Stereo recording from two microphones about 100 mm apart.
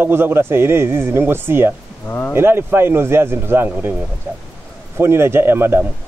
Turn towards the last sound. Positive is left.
turn(degrees=-20)  # may be behind; listen again after turning